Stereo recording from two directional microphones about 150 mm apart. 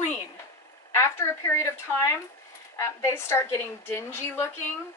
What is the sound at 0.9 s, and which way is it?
A woman's voice, 20° left (ahead or behind).